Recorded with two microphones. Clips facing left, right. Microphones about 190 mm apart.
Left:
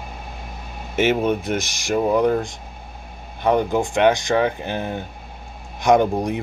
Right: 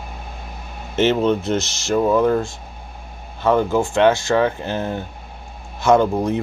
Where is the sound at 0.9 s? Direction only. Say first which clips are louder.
Right 2 dB; 10° left (ahead or behind).